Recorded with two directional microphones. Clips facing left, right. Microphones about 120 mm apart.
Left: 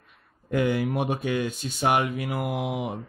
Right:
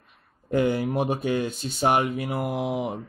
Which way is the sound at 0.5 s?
30° right (ahead or behind).